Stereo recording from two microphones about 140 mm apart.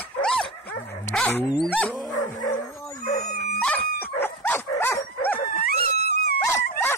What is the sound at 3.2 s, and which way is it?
Dog, 90° left.